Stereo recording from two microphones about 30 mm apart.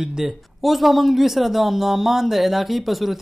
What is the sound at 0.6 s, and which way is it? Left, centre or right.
Speech, centre.